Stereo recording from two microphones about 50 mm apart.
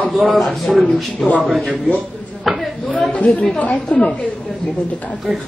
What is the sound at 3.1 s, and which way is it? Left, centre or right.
Speech, left.